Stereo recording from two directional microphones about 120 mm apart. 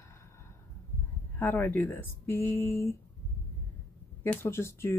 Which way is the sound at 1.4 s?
15° left (ahead or behind).